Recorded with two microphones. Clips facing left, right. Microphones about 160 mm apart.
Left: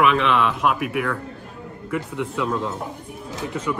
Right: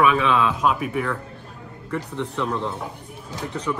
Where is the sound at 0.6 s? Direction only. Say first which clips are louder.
Even; 5° left (ahead or behind).